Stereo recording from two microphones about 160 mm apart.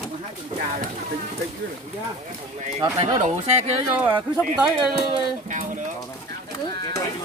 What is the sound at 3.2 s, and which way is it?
Speech, 45° right (ahead or behind).